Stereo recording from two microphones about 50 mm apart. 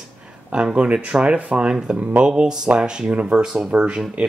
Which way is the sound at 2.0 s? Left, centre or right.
Right.